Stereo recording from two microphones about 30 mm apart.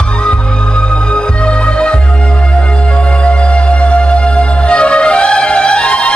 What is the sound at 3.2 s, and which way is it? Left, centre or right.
Music, left.